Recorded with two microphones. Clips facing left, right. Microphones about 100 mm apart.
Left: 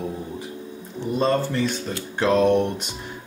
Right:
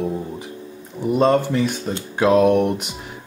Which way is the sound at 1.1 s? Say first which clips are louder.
Right 5 dB; 15° right (ahead or behind).